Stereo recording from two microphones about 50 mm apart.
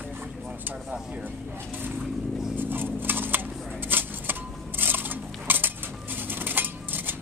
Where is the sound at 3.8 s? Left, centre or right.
Right.